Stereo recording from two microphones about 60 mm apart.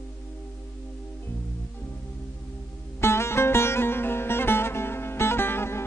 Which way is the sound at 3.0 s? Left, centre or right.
Left.